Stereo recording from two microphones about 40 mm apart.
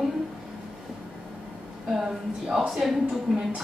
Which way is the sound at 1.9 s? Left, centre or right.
Centre.